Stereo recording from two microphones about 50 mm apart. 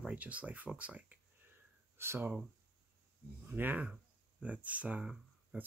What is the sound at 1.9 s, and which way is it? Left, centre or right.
Speech, right.